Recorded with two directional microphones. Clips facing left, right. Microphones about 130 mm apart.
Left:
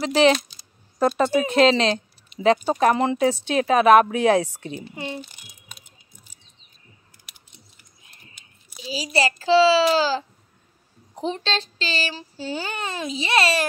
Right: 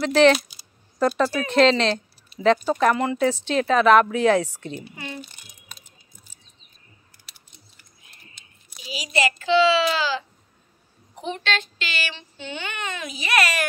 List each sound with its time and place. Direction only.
0.0 s a woman's voice: 10° left (ahead or behind)
0.4 s a sound: 10° right (ahead or behind)
0.9 s speech: 20° left (ahead or behind)
3.3 s a woman's voice: 15° left (ahead or behind)
5.3 s crumpling: 10° left (ahead or behind)
7.2 s chewing: 15° left (ahead or behind)
8.4 s a sound: 10° left (ahead or behind)
8.7 s speech: 30° left (ahead or behind)